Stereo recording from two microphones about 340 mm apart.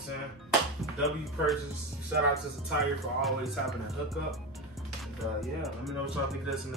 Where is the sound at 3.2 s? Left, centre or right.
Centre.